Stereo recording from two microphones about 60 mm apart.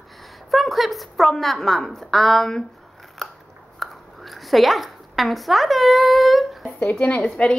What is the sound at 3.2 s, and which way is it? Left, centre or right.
Scissors, centre.